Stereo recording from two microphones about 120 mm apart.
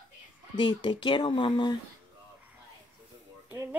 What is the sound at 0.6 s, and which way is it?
Speech, 40° left (ahead or behind).